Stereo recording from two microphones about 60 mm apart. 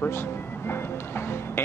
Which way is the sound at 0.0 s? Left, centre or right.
Left.